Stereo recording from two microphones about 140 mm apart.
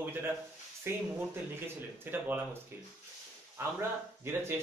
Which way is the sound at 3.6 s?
15° right (ahead or behind).